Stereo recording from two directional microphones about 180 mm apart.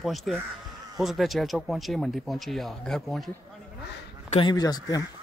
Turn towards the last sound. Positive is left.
turn(degrees=20)  # may be behind; listen again after turning